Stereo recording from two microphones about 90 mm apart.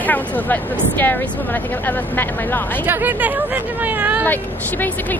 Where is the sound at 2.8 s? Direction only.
20° right (ahead or behind).